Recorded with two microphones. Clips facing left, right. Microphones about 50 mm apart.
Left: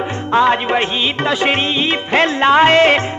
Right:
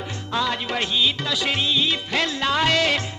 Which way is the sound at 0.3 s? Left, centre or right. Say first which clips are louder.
Left 11 dB; left.